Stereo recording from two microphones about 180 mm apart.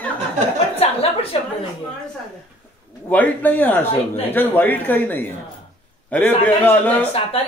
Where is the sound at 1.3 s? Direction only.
35° left (ahead or behind).